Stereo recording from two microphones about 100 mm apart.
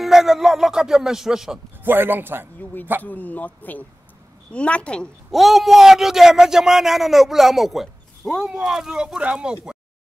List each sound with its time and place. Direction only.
0.0 s a man's voice: 5° right (ahead or behind)
1.9 s a man's voice: 20° right (ahead or behind)
3.0 s speech: 15° left (ahead or behind)
5.3 s a man's voice: centre (ahead or behind)